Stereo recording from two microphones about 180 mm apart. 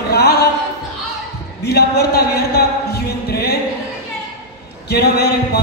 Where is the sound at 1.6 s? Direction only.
60° left (ahead or behind).